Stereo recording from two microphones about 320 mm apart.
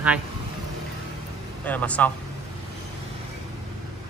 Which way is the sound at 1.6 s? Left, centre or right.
Centre.